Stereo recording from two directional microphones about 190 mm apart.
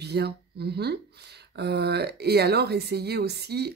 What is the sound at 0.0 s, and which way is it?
A woman's voice, 60° right (ahead or behind).